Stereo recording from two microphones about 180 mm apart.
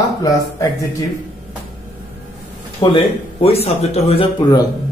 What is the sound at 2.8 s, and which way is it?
Speech, 30° left (ahead or behind).